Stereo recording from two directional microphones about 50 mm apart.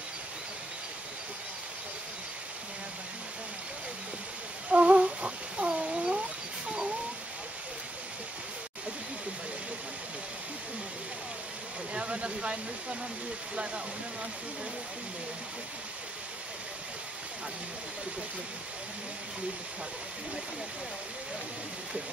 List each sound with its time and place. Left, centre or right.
4.6 s humming: right
5.7 s cat: right
11.9 s a sound: right